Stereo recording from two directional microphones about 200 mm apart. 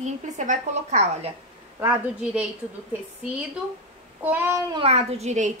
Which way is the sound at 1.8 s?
5° right (ahead or behind).